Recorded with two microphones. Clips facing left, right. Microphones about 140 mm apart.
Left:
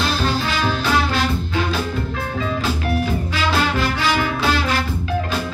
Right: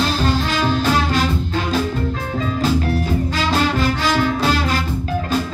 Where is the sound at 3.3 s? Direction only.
40° right (ahead or behind).